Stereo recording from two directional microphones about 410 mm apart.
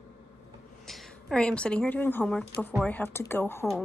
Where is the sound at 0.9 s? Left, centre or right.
Centre.